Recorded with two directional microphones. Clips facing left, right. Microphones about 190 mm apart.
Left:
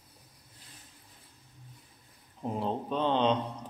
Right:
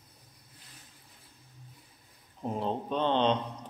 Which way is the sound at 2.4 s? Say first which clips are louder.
Even; centre (ahead or behind).